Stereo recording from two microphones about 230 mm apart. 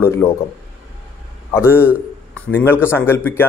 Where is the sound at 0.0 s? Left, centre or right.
Centre.